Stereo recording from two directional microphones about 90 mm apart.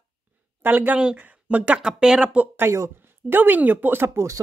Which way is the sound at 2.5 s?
30° right (ahead or behind).